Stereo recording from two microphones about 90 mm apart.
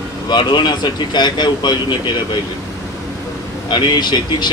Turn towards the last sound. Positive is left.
turn(degrees=55)  # may be behind; listen again after turning